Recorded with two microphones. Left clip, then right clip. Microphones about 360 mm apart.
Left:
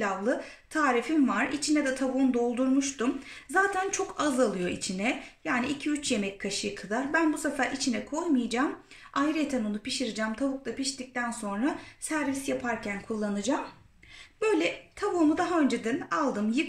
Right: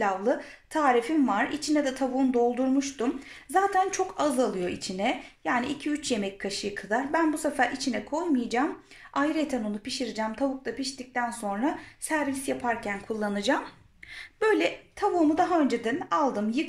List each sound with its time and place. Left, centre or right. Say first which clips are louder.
0.0 s speech: right 3 dB; centre